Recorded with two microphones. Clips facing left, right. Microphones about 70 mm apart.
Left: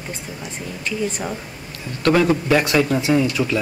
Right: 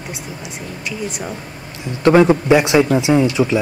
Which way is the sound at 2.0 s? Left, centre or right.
Right.